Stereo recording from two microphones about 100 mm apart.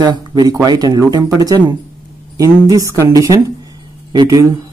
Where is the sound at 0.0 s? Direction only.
45° right (ahead or behind).